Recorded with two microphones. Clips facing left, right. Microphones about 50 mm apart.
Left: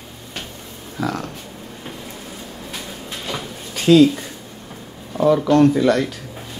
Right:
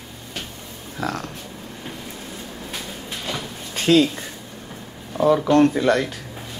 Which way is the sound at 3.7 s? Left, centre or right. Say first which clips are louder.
Left 3 dB; right.